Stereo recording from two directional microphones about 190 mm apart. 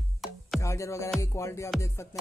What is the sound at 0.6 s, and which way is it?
Music, 15° left (ahead or behind).